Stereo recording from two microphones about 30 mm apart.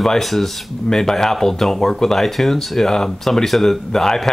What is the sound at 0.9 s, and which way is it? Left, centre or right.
Speech, centre.